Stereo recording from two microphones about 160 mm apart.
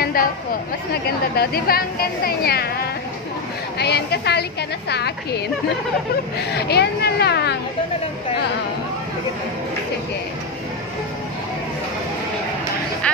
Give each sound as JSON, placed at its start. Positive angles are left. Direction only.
{"t": 0.0, "sound": "chatter", "side_deg": 65}
{"t": 1.3, "sound": "a woman's voice", "side_deg": 80}
{"t": 6.5, "sound": "a woman's voice", "side_deg": 90}